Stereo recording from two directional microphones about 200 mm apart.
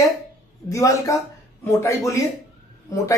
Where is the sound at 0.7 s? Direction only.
15° left (ahead or behind).